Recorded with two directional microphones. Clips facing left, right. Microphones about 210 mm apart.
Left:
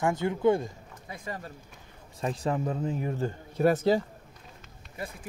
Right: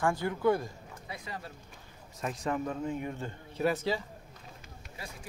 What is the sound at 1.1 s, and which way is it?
Speech, 50° left (ahead or behind).